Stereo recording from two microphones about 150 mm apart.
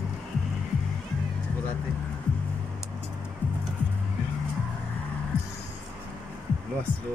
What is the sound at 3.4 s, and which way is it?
Music, 10° left (ahead or behind).